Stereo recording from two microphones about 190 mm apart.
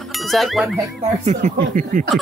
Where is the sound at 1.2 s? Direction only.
40° right (ahead or behind).